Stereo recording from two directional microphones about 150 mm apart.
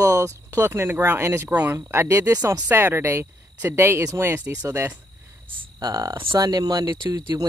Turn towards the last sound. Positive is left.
turn(degrees=-30)  # may be behind; listen again after turning